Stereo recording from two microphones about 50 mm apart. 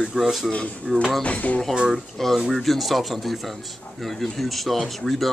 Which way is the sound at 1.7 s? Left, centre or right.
Centre.